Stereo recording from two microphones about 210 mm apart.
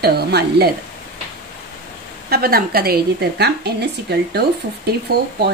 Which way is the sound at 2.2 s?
45° right (ahead or behind).